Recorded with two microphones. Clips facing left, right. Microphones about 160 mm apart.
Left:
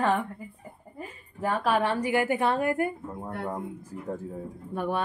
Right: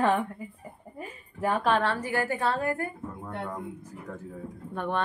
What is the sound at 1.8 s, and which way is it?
A woman's voice, 15° left (ahead or behind).